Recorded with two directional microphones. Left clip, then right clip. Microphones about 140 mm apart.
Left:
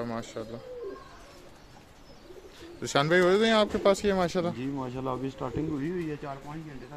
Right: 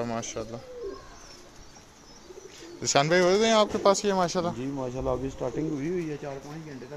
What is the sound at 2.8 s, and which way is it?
Speech, 20° left (ahead or behind).